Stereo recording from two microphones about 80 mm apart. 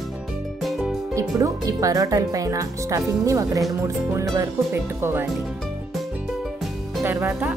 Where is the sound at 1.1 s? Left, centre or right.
Right.